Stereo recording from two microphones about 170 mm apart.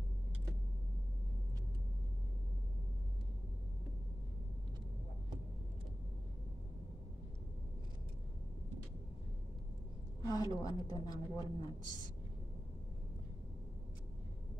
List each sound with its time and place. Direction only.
10.2 s a woman's voice: 20° left (ahead or behind)